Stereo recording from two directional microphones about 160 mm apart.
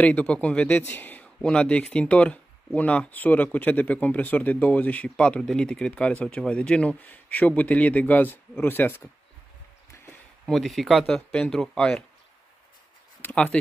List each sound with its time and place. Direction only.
0.0 s a man's voice: 10° left (ahead or behind)
9.8 s a sound: 15° left (ahead or behind)
10.4 s speech: centre (ahead or behind)
13.2 s speech: 5° left (ahead or behind)